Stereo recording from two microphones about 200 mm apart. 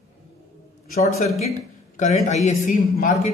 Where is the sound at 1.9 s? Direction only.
35° left (ahead or behind).